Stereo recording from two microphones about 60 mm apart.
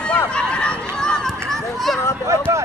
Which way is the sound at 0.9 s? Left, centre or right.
Centre.